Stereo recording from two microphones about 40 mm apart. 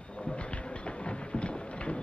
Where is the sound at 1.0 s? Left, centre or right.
Left.